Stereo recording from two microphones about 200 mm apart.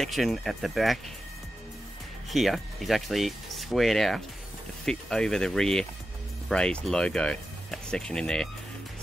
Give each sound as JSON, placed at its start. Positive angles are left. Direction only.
{"t": 0.0, "sound": "speech", "side_deg": 0}
{"t": 2.3, "sound": "speech", "side_deg": 0}